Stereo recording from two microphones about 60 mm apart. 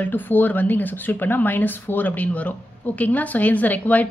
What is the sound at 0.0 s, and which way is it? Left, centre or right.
A woman's voice, left.